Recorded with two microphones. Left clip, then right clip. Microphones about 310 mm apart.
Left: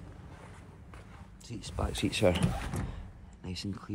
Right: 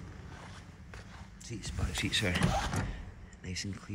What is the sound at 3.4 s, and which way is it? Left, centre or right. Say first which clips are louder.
Speech: even; centre.